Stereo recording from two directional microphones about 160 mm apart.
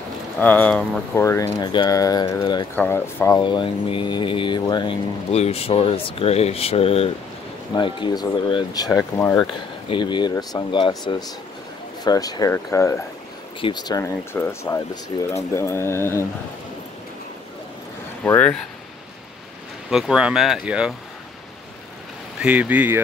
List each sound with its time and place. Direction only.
0.4 s speech: 10° left (ahead or behind)
1.1 s speech: 15° left (ahead or behind)
1.6 s speech: 30° left (ahead or behind)
2.7 s speech: 10° left (ahead or behind)
3.3 s speech: 30° left (ahead or behind)
5.3 s speech: 40° left (ahead or behind); by 9.5 s 20° left (ahead or behind)
9.5 s speech: 30° left (ahead or behind)
13.6 s speech: 30° left (ahead or behind)
18.2 s speech: 10° left (ahead or behind)
19.9 s speech: 5° right (ahead or behind)
22.4 s speech: 10° right (ahead or behind)